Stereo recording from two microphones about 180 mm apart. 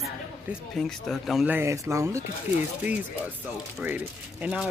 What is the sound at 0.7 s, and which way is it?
Speech, centre (ahead or behind).